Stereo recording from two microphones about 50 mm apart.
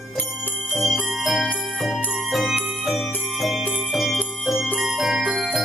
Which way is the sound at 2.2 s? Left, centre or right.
Centre.